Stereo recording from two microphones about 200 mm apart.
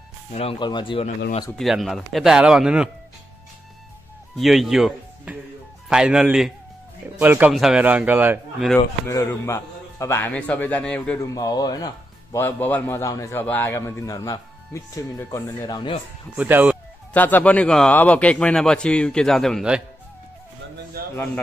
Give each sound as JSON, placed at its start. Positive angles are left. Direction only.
{"t": 0.3, "sound": "speech", "side_deg": 30}
{"t": 1.6, "sound": "speech", "side_deg": 0}
{"t": 4.4, "sound": "a man's voice", "side_deg": 0}
{"t": 9.0, "sound": "speech", "side_deg": 15}
{"t": 11.2, "sound": "speech", "side_deg": 20}
{"t": 16.3, "sound": "a man's voice", "side_deg": -10}
{"t": 17.1, "sound": "speech", "side_deg": 10}
{"t": 21.0, "sound": "a sound", "side_deg": -50}